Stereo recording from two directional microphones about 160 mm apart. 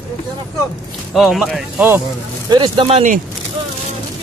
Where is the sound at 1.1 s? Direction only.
Centre (ahead or behind).